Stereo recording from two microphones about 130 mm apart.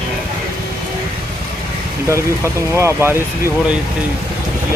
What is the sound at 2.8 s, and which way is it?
Speech, 20° right (ahead or behind).